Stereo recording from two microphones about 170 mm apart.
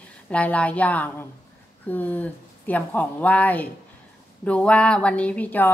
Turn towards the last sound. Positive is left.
turn(degrees=10)  # may be behind; listen again after turning